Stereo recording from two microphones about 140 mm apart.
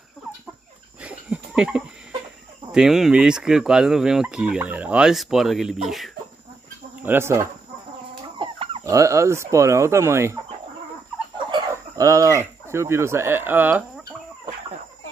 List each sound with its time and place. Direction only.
1.0 s a sound: 10° right (ahead or behind)
2.7 s speech: 5° right (ahead or behind)
7.0 s speech: 15° right (ahead or behind)
8.4 s chicken: 40° right (ahead or behind)
8.8 s chicken: 20° right (ahead or behind)
11.7 s speech: 20° right (ahead or behind)